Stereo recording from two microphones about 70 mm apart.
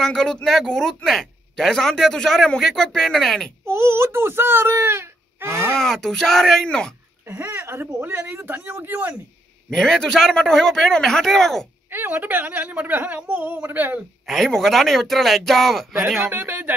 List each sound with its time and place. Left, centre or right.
0.0 s speech: centre
3.6 s baby cry: right
5.8 s a man's voice: centre
7.2 s speech: right
8.5 s a woman's voice: right
9.7 s a man's voice: centre
11.9 s a woman's voice: right
14.2 s speech: centre
16.2 s speech: right